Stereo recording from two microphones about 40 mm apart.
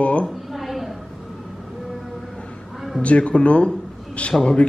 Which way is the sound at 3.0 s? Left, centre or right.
Left.